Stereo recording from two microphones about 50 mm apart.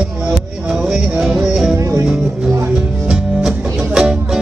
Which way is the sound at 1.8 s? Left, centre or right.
Right.